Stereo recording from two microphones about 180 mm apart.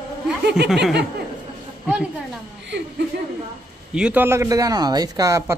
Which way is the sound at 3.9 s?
5° right (ahead or behind).